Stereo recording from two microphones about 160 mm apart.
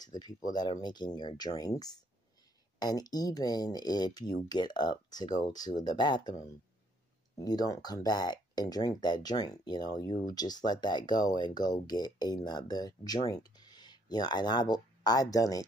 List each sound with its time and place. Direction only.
0.0 s speech: 25° left (ahead or behind)